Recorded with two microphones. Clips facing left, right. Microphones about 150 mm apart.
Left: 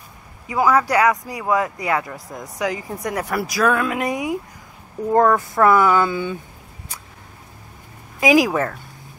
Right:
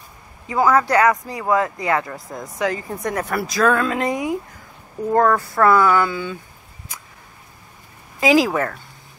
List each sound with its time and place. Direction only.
0.5 s speech: 10° left (ahead or behind)
8.2 s speech: 15° left (ahead or behind)